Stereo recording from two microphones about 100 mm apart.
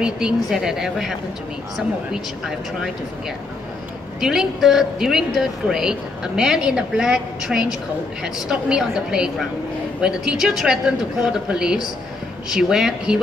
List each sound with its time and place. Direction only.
0.0 s a woman's voice: 5° right (ahead or behind)
2.1 s a woman's voice: 5° right (ahead or behind)
4.2 s a woman's voice: 5° right (ahead or behind)